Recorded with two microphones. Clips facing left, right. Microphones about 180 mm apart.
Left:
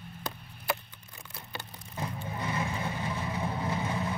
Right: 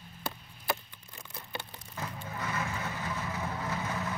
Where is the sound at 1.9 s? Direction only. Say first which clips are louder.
Left 3 dB; 25° left (ahead or behind).